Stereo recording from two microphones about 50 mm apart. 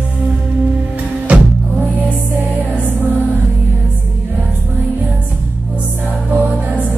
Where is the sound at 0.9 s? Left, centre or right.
Right.